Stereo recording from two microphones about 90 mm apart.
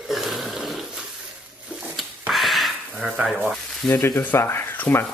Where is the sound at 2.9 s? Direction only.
15° right (ahead or behind).